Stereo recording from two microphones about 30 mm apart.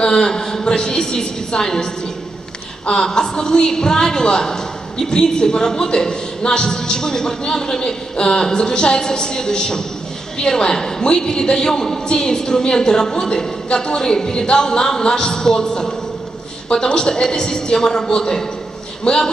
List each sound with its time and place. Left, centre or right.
0.0 s a woman's voice: left
2.9 s a woman's voice: left